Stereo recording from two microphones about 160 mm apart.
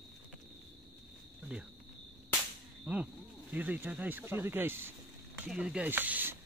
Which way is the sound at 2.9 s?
10° right (ahead or behind).